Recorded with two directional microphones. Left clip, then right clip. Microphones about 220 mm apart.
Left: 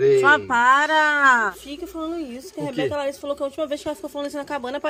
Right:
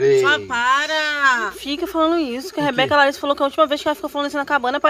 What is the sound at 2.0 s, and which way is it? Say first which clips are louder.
Speech: right 12 dB; 10° right (ahead or behind).